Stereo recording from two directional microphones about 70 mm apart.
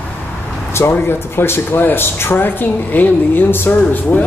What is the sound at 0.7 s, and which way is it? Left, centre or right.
Speech, left.